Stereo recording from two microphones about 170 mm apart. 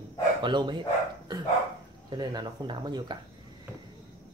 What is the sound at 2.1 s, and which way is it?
Speech, 25° right (ahead or behind).